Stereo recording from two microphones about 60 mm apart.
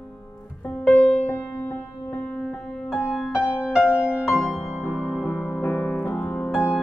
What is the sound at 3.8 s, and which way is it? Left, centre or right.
Music, centre.